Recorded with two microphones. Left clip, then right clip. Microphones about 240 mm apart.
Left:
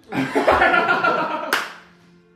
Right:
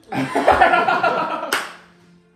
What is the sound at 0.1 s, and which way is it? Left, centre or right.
Speech, centre.